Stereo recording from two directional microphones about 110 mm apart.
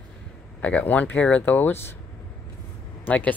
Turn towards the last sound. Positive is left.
turn(degrees=15)  # may be behind; listen again after turning